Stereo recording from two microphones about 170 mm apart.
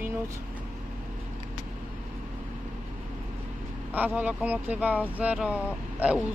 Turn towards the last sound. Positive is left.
turn(degrees=-10)  # may be behind; listen again after turning